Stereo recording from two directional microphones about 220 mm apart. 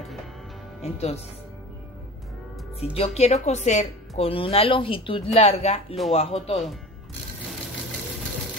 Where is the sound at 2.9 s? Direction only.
30° left (ahead or behind).